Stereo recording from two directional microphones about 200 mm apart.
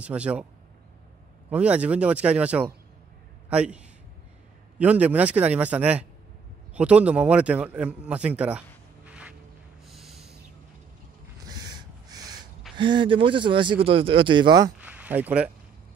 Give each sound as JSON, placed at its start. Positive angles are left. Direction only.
{"t": 0.0, "sound": "a man's voice", "side_deg": -5}
{"t": 1.5, "sound": "a man's voice", "side_deg": -5}
{"t": 9.8, "sound": "snort", "side_deg": 0}
{"t": 11.4, "sound": "a sound", "side_deg": -20}
{"t": 12.7, "sound": "speech", "side_deg": -25}
{"t": 14.8, "sound": "a sound", "side_deg": -5}